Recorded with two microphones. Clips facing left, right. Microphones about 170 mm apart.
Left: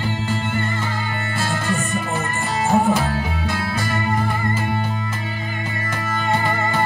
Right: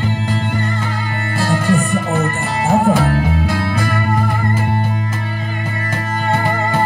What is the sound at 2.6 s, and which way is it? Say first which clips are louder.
Music: right 4 dB; 65° right (ahead or behind).